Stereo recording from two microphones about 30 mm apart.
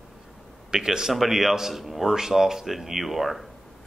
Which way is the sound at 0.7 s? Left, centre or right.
Centre.